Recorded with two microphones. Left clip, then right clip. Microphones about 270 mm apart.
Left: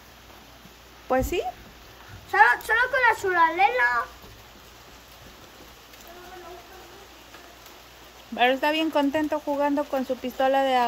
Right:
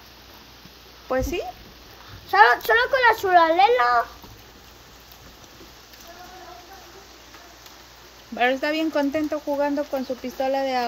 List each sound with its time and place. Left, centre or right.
1.0 s speech: centre
2.3 s speech: right
8.4 s speech: centre